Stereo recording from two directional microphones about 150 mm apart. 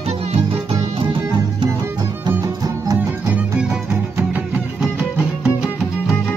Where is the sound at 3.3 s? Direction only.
10° right (ahead or behind).